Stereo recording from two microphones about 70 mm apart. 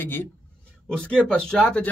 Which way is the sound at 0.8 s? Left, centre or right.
Centre.